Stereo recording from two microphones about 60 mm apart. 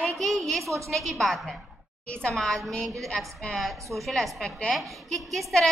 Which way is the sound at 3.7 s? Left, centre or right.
Right.